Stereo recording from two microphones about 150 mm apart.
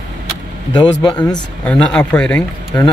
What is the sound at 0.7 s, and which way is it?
Speech, 30° left (ahead or behind).